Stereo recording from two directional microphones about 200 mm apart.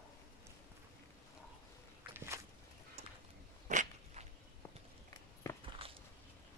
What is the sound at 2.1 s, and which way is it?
Walk, 15° right (ahead or behind).